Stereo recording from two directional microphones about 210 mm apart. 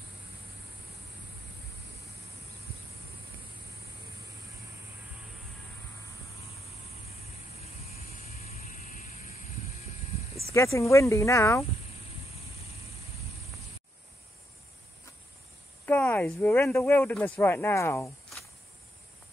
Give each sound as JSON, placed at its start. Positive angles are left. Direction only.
{"t": 7.6, "sound": "vehicle", "side_deg": 30}
{"t": 10.5, "sound": "speech", "side_deg": 15}
{"t": 15.8, "sound": "speech", "side_deg": 10}